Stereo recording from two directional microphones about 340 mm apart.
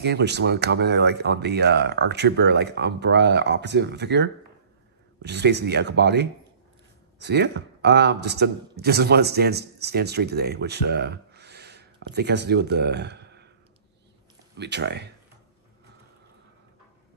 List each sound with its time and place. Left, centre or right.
0.0 s a man's voice: right
14.6 s speech: right